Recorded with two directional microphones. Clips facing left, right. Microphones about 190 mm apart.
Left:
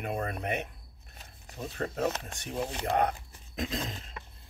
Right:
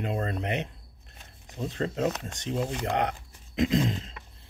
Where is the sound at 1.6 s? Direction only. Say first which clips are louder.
Right 3 dB; 20° right (ahead or behind).